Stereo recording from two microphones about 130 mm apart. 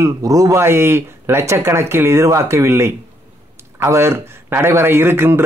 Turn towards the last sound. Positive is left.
turn(degrees=-20)  # may be behind; listen again after turning